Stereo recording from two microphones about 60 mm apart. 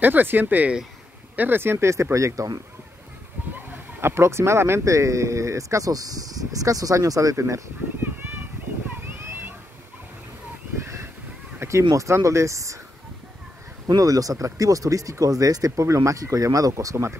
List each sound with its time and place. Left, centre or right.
0.0 s speech: right
3.5 s speech: right
9.0 s a sound: right
11.6 s speech: right
13.9 s speech: right